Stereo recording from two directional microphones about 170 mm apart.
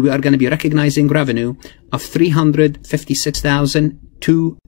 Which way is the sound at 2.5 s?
45° left (ahead or behind).